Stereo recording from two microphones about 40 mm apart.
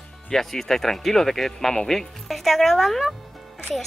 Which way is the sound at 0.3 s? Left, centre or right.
Centre.